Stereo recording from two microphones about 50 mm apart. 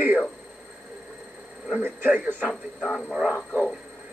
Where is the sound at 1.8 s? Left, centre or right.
Right.